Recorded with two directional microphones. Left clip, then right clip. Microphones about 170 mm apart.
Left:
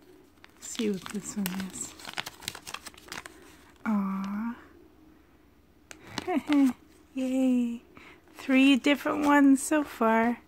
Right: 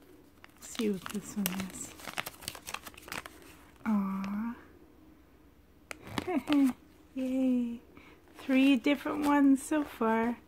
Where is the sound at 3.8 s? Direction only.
25° left (ahead or behind).